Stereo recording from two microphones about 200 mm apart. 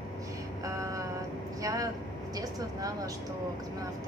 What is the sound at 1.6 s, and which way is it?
Vehicle, 15° right (ahead or behind).